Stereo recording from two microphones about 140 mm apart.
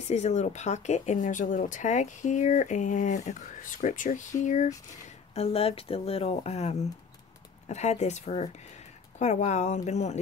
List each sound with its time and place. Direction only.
0.0 s speech: 55° left (ahead or behind)
5.3 s speech: 45° left (ahead or behind)